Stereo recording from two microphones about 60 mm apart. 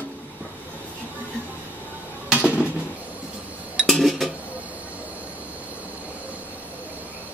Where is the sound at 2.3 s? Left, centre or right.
Centre.